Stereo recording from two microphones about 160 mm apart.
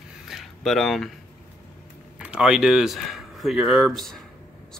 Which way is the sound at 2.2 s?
5° right (ahead or behind).